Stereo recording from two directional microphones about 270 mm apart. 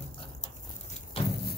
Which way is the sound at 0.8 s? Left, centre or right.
Left.